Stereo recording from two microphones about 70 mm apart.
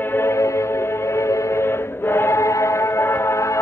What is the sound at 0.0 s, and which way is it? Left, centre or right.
Music, left.